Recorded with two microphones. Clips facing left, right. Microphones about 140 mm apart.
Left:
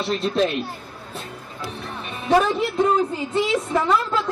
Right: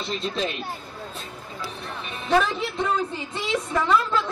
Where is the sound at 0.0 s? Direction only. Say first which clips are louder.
Left 7 dB; 55° left (ahead or behind).